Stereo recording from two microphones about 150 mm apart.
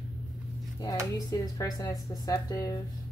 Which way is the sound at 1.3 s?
25° left (ahead or behind).